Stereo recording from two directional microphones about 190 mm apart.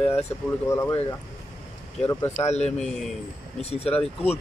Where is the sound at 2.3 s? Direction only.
35° left (ahead or behind).